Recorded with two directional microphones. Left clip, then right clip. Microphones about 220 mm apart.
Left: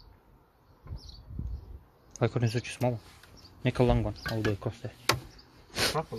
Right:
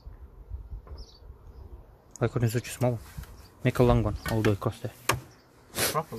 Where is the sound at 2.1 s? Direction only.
5° right (ahead or behind).